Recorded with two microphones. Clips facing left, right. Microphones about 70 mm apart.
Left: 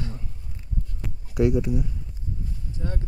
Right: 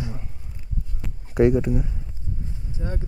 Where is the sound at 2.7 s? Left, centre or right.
Centre.